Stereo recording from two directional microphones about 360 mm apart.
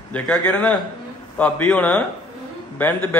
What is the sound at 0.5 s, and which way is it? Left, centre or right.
A man's voice, centre.